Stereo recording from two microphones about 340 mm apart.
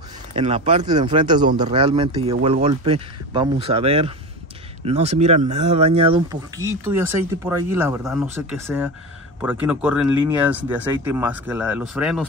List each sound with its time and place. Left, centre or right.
0.3 s speech: centre